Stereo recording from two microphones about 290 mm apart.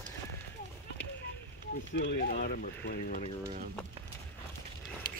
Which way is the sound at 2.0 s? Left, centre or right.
Left.